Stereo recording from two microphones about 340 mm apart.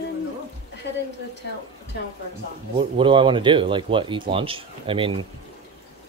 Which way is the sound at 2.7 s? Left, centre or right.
Centre.